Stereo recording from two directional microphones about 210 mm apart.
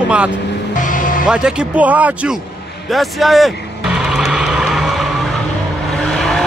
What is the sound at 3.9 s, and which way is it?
Vehicle, centre (ahead or behind).